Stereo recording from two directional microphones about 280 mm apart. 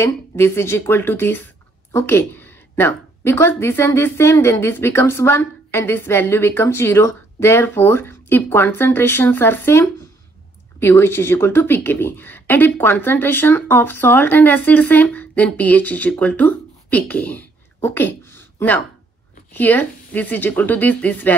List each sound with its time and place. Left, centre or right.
0.0 s a woman's voice: centre
17.7 s a sound: centre
19.5 s a woman's voice: centre